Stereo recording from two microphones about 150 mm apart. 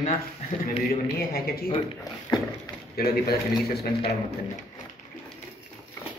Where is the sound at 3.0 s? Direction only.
90° left.